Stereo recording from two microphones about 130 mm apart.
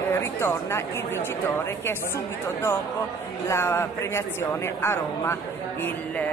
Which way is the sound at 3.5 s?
20° left (ahead or behind).